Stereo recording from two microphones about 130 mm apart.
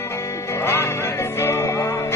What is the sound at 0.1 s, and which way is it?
Music, 20° left (ahead or behind).